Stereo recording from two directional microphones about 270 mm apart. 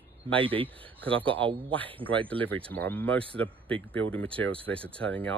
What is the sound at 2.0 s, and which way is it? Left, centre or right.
Speech, centre.